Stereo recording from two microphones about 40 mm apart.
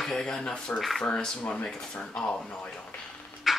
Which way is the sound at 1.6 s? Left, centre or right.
Centre.